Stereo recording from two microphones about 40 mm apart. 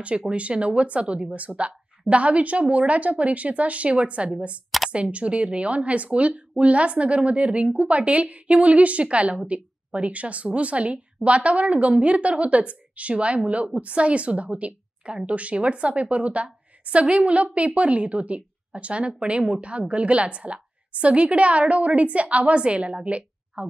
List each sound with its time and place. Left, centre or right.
0.3 s a woman's voice: right